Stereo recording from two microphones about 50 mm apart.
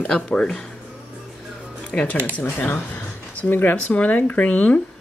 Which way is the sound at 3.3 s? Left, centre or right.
Left.